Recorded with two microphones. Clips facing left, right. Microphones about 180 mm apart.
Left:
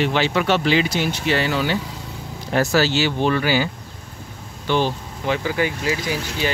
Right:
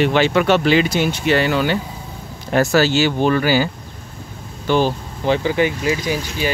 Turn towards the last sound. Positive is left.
turn(degrees=-15)  # may be behind; listen again after turning